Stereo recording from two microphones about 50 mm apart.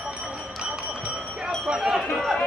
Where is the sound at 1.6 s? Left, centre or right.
Centre.